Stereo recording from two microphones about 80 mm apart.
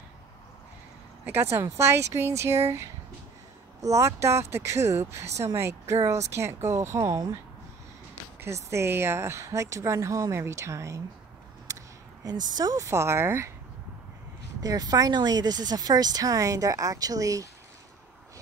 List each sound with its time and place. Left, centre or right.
1.2 s speech: right
8.4 s speech: right
14.6 s speech: right